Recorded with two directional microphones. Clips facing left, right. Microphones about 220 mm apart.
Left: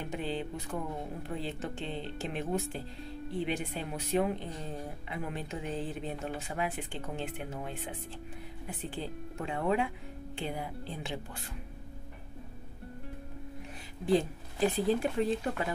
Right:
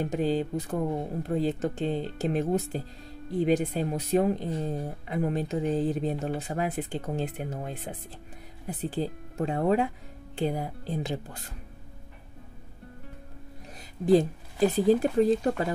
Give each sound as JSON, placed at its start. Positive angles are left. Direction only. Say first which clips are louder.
{"t": 0.0, "sound": "speech", "louder": "right 9 dB", "side_deg": -40}
{"t": 14.0, "sound": "speech", "louder": "right 7 dB", "side_deg": -40}